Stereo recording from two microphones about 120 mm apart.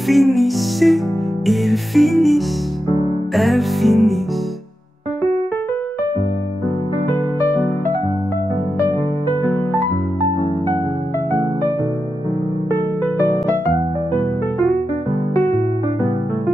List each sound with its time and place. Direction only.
0.1 s music: centre (ahead or behind)
12.7 s music: 20° left (ahead or behind)
15.3 s music: 25° left (ahead or behind)